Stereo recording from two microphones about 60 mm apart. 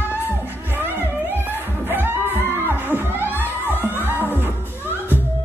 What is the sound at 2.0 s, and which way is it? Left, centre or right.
Music, right.